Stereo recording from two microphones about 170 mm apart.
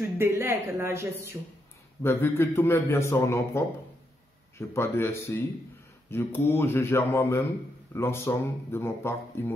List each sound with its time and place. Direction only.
0.2 s speech: 15° right (ahead or behind)
2.0 s a man's voice: 15° left (ahead or behind)